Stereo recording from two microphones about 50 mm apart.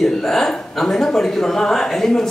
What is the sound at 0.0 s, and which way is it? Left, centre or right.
A man's voice, centre.